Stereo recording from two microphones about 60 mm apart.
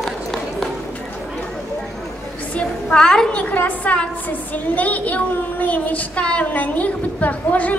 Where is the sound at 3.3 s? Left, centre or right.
Left.